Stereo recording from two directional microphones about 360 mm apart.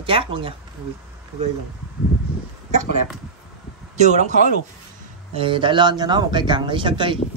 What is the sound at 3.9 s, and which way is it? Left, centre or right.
Speech, centre.